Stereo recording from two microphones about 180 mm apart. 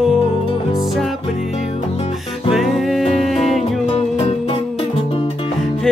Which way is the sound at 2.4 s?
Centre (ahead or behind).